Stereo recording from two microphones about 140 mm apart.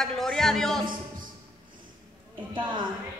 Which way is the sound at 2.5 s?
35° right (ahead or behind).